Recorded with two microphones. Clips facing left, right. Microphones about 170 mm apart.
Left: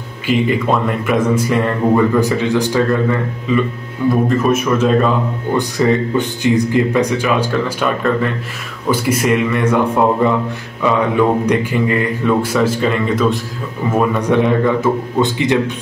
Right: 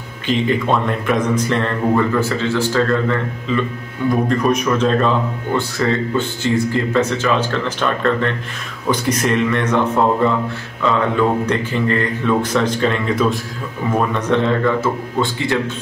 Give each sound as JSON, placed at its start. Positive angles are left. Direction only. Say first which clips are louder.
{"t": 0.3, "sound": "a man's voice", "louder": "left 2 dB", "side_deg": 5}
{"t": 13.9, "sound": "speech", "louder": "left 3 dB", "side_deg": 10}